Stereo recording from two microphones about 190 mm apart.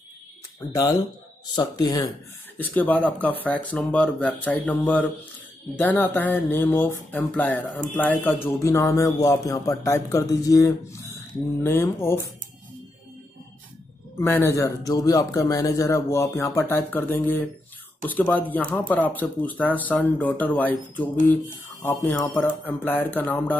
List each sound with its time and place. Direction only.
0.7 s a man's voice: 20° left (ahead or behind)
2.0 s a man's voice: 10° left (ahead or behind)
14.1 s a man's voice: 15° left (ahead or behind)